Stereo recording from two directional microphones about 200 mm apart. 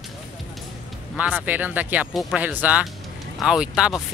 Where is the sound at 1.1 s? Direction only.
5° right (ahead or behind).